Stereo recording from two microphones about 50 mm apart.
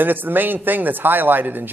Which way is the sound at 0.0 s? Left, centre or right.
Right.